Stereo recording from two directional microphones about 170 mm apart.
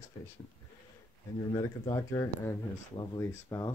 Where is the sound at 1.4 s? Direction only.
25° left (ahead or behind).